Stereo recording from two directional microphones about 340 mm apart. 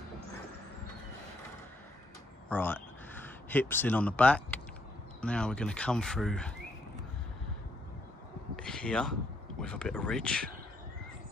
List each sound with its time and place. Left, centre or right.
2.5 s speech: centre
8.5 s speech: centre